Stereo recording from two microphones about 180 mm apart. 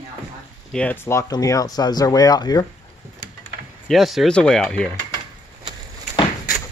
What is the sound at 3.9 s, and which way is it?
Speech, centre (ahead or behind).